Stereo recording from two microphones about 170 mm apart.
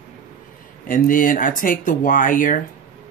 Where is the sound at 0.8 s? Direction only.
55° left (ahead or behind).